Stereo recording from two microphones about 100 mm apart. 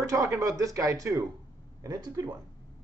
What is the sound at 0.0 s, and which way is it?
Speech, 35° right (ahead or behind).